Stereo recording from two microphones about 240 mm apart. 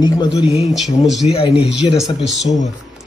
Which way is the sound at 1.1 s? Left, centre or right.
Centre.